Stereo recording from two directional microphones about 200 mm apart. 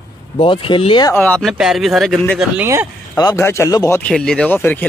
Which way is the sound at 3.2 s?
15° left (ahead or behind).